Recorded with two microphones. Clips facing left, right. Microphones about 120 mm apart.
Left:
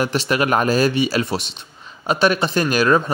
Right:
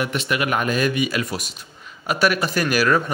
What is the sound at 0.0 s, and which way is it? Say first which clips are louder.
Speech: left 4 dB; 30° left (ahead or behind).